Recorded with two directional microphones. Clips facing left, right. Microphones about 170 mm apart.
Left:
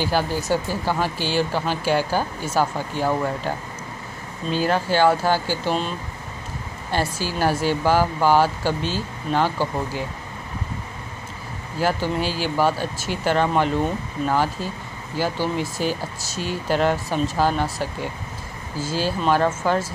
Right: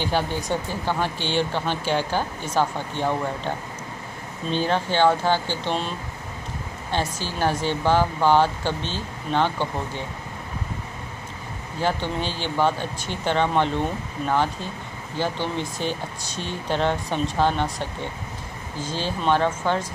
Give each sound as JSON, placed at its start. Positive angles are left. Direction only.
{"t": 0.0, "sound": "speech", "side_deg": 5}
{"t": 11.8, "sound": "speech", "side_deg": 5}